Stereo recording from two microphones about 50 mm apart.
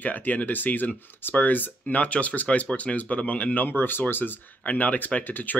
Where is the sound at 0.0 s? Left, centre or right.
Left.